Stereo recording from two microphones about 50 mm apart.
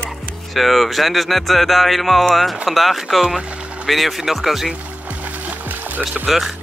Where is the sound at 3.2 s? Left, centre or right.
Centre.